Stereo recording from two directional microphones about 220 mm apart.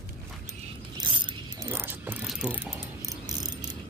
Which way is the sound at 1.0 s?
20° right (ahead or behind).